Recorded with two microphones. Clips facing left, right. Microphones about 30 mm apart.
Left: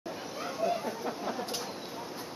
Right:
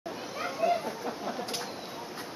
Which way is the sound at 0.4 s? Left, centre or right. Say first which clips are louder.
Right 3 dB; right.